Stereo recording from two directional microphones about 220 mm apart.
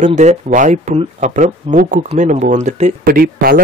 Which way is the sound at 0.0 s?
30° right (ahead or behind).